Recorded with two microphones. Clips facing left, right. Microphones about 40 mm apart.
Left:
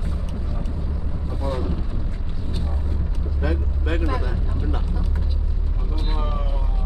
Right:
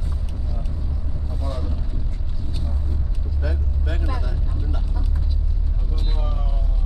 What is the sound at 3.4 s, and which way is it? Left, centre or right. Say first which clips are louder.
Vehicle: left 4 dB; left.